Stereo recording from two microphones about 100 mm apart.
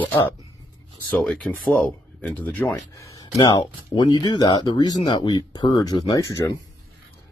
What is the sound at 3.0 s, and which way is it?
Speech, 40° left (ahead or behind).